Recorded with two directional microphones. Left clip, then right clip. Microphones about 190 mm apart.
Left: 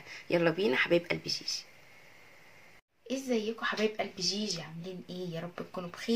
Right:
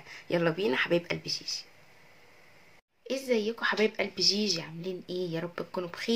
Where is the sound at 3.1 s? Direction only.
40° right (ahead or behind).